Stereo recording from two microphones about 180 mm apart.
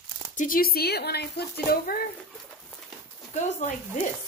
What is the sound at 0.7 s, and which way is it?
Speech, 60° left (ahead or behind).